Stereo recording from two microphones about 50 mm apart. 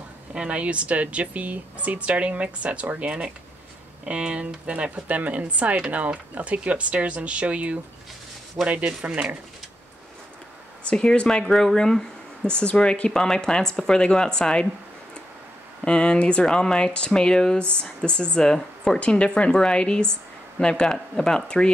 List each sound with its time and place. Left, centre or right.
0.3 s speech: centre
10.8 s a woman's voice: centre
15.8 s a woman's voice: centre